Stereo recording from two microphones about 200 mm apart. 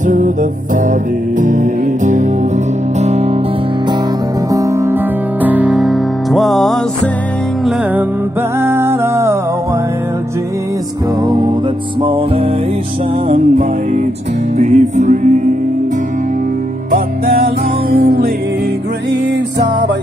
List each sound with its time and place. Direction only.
0.0 s music: 40° right (ahead or behind)
4.5 s music: 15° right (ahead or behind); by 6.8 s centre (ahead or behind)
8.5 s music: 10° right (ahead or behind)
12.0 s music: 25° right (ahead or behind)
13.3 s music: 40° right (ahead or behind)
16.9 s music: 50° right (ahead or behind)